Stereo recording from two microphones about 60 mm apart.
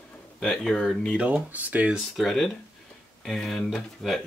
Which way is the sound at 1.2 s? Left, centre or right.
Right.